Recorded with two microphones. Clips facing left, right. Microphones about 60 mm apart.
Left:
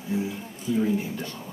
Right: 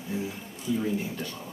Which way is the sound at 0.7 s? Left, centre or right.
Centre.